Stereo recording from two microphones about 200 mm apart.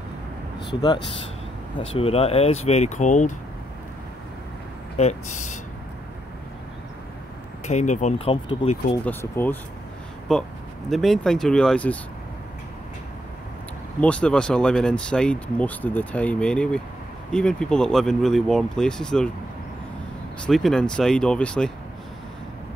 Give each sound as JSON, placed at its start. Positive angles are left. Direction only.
{"t": 1.9, "sound": "speech", "side_deg": 30}
{"t": 4.9, "sound": "speech", "side_deg": 35}
{"t": 7.6, "sound": "speech", "side_deg": 35}
{"t": 9.0, "sound": "speech", "side_deg": 10}
{"t": 14.0, "sound": "speech", "side_deg": 5}
{"t": 20.4, "sound": "speech", "side_deg": 0}